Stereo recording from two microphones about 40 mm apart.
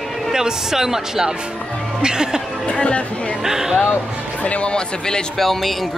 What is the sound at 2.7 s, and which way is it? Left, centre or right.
Speech, left.